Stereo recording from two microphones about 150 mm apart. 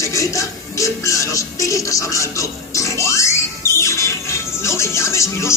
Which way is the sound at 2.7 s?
20° left (ahead or behind).